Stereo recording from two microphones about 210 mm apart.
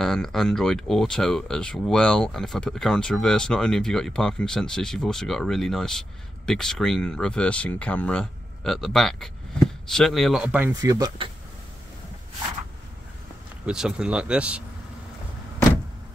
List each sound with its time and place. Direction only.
0.0 s speech: centre (ahead or behind)
10.7 s speech: 15° right (ahead or behind)
13.7 s speech: 5° right (ahead or behind)